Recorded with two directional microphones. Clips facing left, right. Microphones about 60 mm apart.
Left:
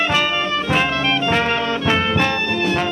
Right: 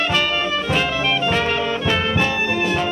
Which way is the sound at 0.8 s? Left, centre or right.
Centre.